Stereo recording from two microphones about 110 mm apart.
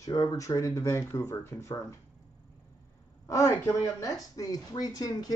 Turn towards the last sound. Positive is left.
turn(degrees=35)  # may be behind; listen again after turning